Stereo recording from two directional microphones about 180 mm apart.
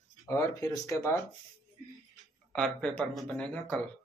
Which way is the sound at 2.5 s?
5° left (ahead or behind).